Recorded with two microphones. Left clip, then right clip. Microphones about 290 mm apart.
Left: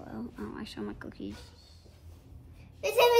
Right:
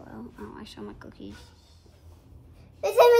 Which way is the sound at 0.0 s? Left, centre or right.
Left.